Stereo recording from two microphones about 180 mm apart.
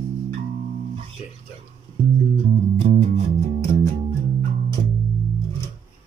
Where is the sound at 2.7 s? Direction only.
35° right (ahead or behind).